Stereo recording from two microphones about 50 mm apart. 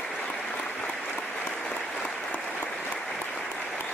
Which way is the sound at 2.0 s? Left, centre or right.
Left.